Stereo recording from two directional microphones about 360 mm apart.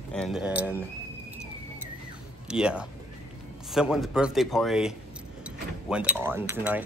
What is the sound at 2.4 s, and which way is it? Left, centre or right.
A man's voice, centre.